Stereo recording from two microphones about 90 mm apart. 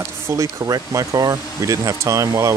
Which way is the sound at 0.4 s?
40° right (ahead or behind).